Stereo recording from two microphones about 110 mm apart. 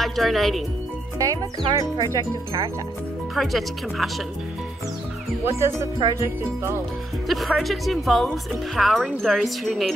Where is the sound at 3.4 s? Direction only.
Centre (ahead or behind).